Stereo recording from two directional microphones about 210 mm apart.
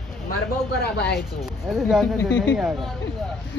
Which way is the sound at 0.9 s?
50° left (ahead or behind).